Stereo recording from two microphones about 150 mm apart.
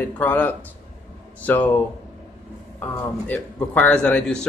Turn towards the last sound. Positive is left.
turn(degrees=5)  # may be behind; listen again after turning